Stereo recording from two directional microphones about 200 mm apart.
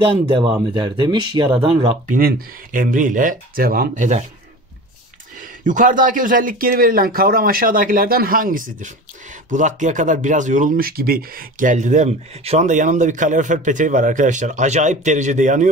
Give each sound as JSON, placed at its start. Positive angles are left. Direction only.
{"t": 0.0, "sound": "speech", "side_deg": -25}
{"t": 2.0, "sound": "speech", "side_deg": -45}
{"t": 5.6, "sound": "speech", "side_deg": -40}